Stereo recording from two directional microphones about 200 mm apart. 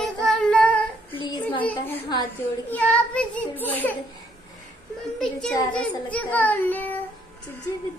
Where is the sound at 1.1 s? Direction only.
25° left (ahead or behind).